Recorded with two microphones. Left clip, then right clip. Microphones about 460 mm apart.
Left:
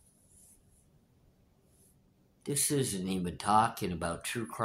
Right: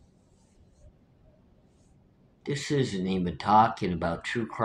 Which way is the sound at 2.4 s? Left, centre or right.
Left.